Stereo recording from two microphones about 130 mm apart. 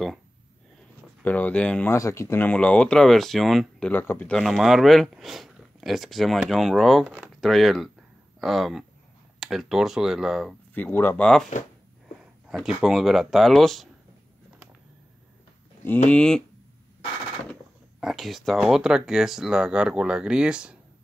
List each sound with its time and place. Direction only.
1.2 s speech: 10° left (ahead or behind)
2.0 s speech: 20° left (ahead or behind); by 3.9 s centre (ahead or behind)
3.9 s speech: 15° left (ahead or behind)
4.4 s speech: centre (ahead or behind)
7.1 s speech: 10° right (ahead or behind)
7.3 s speech: centre (ahead or behind)
10.7 s speech: 15° left (ahead or behind)
11.5 s speech: 70° left (ahead or behind)
12.4 s speech: 5° right (ahead or behind)
16.1 s speech: 5° left (ahead or behind)
18.0 s speech: centre (ahead or behind)